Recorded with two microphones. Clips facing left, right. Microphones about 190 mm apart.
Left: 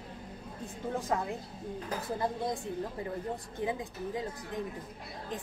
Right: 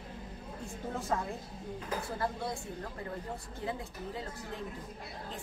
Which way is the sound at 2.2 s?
15° left (ahead or behind).